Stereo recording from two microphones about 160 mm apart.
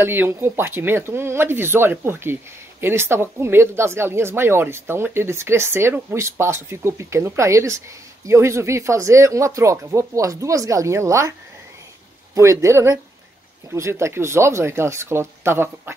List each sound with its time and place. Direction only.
0.0 s speech: 15° right (ahead or behind)
12.4 s speech: 20° right (ahead or behind)